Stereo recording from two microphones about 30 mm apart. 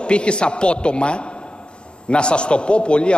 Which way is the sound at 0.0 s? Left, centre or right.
Left.